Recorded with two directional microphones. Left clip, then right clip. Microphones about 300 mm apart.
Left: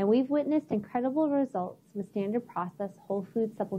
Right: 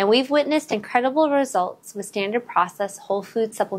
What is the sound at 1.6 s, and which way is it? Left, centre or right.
Speech, centre.